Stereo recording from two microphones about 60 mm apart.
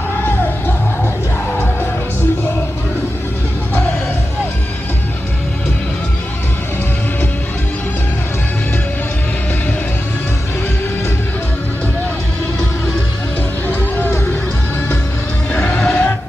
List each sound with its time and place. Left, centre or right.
13.7 s music: left
15.5 s music: left